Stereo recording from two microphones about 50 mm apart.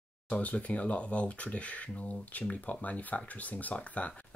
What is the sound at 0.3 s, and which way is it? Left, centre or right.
Speech, left.